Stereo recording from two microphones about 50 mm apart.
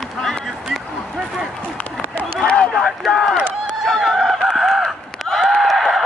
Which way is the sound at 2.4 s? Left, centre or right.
Left.